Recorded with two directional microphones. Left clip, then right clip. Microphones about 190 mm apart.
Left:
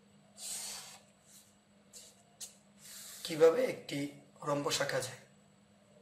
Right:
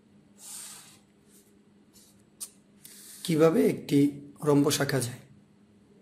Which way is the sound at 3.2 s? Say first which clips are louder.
Right 4 dB; 60° right (ahead or behind).